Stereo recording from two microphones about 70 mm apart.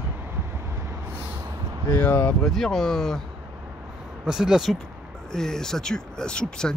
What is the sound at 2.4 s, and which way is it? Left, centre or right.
Speech, centre.